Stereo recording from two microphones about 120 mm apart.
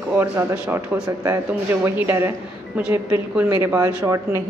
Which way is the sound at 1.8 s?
20° right (ahead or behind).